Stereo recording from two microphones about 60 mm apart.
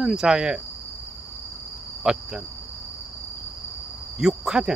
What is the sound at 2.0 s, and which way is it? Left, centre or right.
Cricket, centre.